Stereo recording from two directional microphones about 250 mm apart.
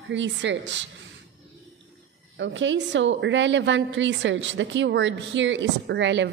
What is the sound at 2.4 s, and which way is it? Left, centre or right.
A woman's voice, right.